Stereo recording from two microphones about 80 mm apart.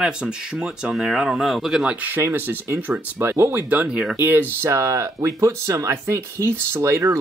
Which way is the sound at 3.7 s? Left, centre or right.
Centre.